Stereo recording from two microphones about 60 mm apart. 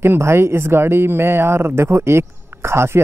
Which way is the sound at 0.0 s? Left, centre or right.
Right.